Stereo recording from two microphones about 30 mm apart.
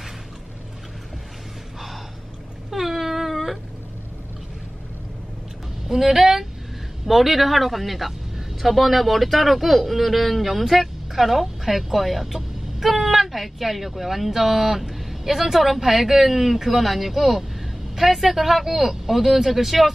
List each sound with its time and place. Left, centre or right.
2.7 s cat: centre
5.9 s speech: centre